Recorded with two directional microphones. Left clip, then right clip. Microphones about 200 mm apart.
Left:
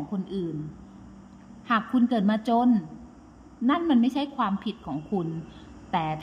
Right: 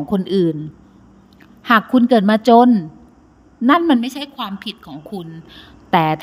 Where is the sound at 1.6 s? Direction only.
40° right (ahead or behind).